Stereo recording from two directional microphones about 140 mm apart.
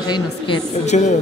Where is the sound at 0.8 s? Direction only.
55° left (ahead or behind).